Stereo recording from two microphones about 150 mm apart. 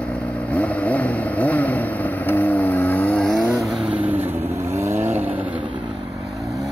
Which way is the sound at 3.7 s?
5° right (ahead or behind).